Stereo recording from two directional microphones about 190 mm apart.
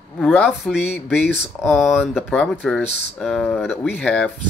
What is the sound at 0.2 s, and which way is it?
Speech, 10° left (ahead or behind).